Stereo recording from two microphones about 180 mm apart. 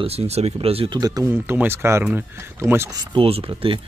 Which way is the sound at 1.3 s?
10° right (ahead or behind).